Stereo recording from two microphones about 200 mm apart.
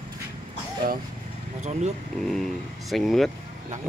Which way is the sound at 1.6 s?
35° right (ahead or behind).